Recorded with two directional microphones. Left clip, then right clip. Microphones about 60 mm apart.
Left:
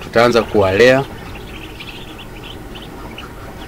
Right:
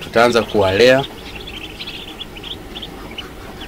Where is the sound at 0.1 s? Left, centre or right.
Left.